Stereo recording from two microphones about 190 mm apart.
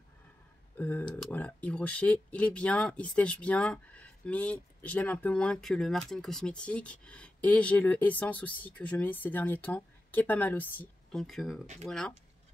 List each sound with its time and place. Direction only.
0.7 s speech: 10° left (ahead or behind)
11.6 s speech: 40° right (ahead or behind)